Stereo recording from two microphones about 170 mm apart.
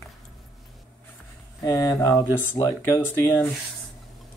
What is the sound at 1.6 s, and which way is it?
Speech, 20° left (ahead or behind).